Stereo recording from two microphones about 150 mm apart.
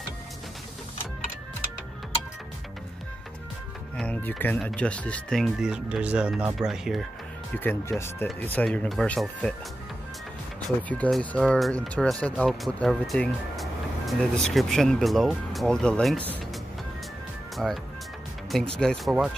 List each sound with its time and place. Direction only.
3.9 s speech: 10° left (ahead or behind)
7.5 s speech: 10° left (ahead or behind)
7.9 s speech: centre (ahead or behind)
8.4 s speech: 10° left (ahead or behind)
10.8 s speech: 10° left (ahead or behind)
17.6 s speech: centre (ahead or behind)